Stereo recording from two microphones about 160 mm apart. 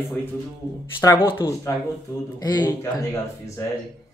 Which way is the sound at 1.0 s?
15° left (ahead or behind).